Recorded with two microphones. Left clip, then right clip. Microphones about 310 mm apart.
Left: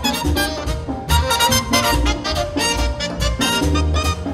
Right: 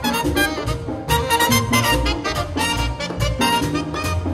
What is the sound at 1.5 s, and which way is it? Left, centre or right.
Music, centre.